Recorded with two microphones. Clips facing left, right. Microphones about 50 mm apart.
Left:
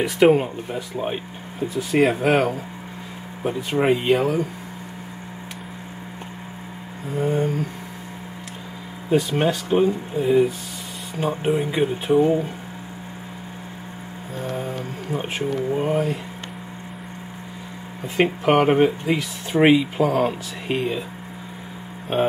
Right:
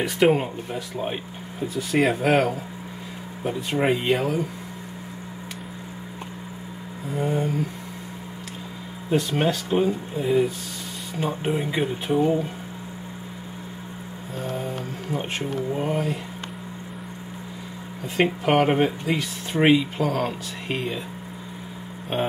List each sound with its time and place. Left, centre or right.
0.0 s speech: centre
7.2 s a sound: centre
9.1 s speech: centre
15.7 s speech: centre
18.0 s speech: centre
22.1 s speech: centre